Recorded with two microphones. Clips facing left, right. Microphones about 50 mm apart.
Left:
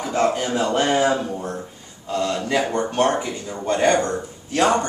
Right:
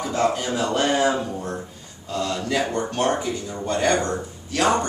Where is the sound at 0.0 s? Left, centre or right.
Left.